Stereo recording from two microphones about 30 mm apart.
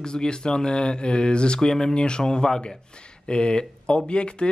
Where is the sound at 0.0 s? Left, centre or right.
Left.